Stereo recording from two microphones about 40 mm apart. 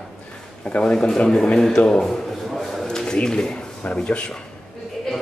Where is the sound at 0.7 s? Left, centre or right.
Left.